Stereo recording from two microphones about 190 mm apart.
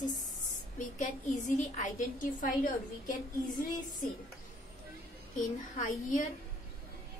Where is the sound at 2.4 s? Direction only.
45° left (ahead or behind).